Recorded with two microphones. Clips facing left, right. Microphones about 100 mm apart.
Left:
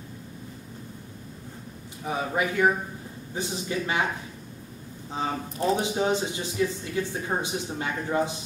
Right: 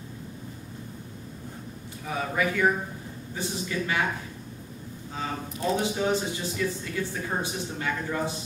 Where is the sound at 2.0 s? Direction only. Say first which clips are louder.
Left 1 dB; 25° left (ahead or behind).